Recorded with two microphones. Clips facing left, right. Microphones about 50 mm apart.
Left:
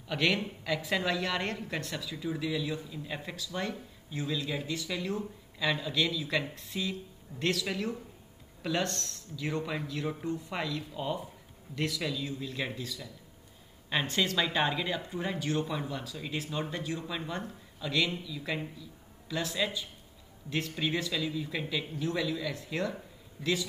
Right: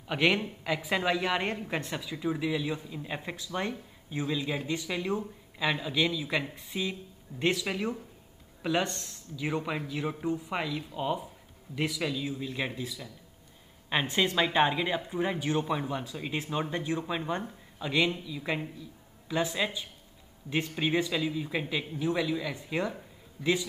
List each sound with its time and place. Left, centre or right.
0.0 s a woman's voice: right